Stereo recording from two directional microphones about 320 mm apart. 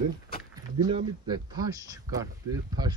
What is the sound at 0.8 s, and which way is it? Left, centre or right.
Speech, centre.